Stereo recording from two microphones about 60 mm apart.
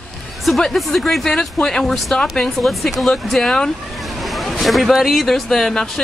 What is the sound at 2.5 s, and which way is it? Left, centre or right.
A woman's voice, centre.